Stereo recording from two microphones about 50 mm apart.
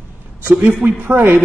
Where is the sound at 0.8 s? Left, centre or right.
Right.